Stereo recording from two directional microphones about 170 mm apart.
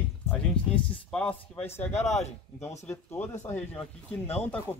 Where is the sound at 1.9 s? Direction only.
40° left (ahead or behind).